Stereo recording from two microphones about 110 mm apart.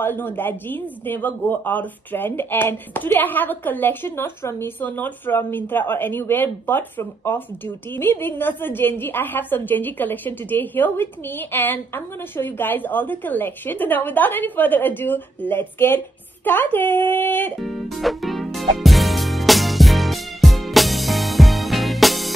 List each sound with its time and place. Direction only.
0.0 s speech: 20° left (ahead or behind)
17.6 s music: centre (ahead or behind)